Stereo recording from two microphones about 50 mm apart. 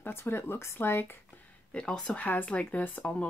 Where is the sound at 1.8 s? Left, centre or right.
Centre.